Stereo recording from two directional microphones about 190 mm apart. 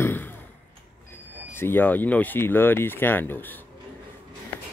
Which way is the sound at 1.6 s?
10° left (ahead or behind).